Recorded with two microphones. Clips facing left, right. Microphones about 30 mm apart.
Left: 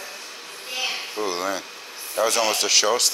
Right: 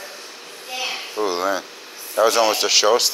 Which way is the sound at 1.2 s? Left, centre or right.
Centre.